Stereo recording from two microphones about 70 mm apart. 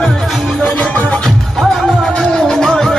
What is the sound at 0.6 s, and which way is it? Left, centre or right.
Music, centre.